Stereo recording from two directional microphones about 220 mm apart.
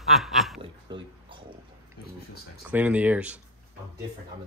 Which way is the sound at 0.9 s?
20° right (ahead or behind).